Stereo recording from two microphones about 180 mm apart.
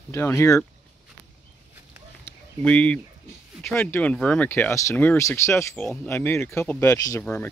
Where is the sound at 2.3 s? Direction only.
5° left (ahead or behind).